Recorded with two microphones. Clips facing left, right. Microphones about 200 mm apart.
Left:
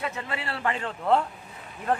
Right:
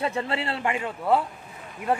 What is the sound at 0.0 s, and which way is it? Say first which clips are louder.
A man's voice: right 5 dB; 30° right (ahead or behind).